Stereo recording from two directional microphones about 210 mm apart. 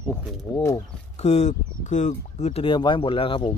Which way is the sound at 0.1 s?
15° left (ahead or behind).